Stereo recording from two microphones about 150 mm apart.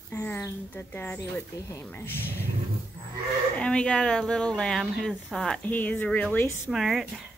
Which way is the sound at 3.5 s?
5° left (ahead or behind).